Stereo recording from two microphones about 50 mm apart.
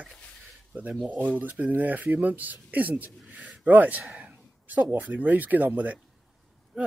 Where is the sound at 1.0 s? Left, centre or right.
Right.